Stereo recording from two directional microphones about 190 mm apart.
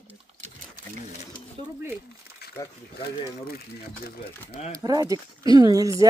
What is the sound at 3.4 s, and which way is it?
Speech, 55° left (ahead or behind).